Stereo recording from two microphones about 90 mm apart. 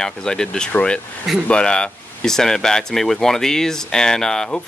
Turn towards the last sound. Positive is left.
turn(degrees=5)  # may be behind; listen again after turning